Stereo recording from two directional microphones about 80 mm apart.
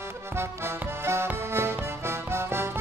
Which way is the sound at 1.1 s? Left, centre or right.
Right.